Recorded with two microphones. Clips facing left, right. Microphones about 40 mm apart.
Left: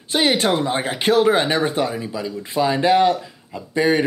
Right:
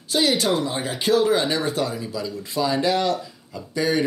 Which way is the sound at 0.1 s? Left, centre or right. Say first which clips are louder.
Left 2 dB; left.